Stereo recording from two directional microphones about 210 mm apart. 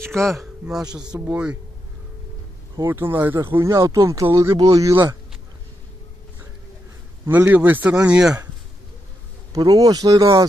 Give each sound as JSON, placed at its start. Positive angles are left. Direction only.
{"t": 0.0, "sound": "speech", "side_deg": 0}
{"t": 0.8, "sound": "speech", "side_deg": -20}
{"t": 1.1, "sound": "speech", "side_deg": -5}
{"t": 2.9, "sound": "speech", "side_deg": -10}
{"t": 7.2, "sound": "speech", "side_deg": -10}
{"t": 9.5, "sound": "speech", "side_deg": -15}